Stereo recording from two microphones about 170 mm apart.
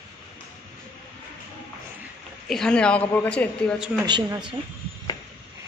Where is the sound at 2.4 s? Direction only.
5° left (ahead or behind).